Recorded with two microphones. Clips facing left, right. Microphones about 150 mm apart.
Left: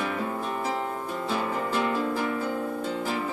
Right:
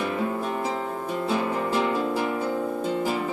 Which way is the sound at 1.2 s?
10° right (ahead or behind).